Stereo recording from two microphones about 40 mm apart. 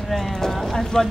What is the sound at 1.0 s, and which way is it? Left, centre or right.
Speech, centre.